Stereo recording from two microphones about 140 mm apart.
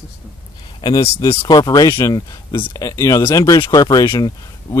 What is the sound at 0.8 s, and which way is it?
Speech, 25° left (ahead or behind).